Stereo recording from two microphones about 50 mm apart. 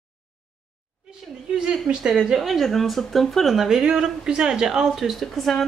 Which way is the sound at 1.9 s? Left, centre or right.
Centre.